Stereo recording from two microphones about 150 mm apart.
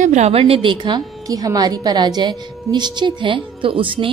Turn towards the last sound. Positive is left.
turn(degrees=-35)  # may be behind; listen again after turning